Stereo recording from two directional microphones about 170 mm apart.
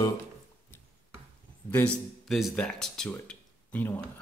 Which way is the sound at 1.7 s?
10° left (ahead or behind).